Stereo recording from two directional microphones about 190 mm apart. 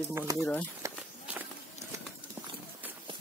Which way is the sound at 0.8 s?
10° right (ahead or behind).